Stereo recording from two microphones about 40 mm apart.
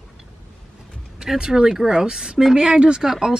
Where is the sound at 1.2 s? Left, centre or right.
Centre.